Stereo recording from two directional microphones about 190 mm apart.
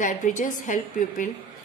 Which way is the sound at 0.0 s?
40° left (ahead or behind).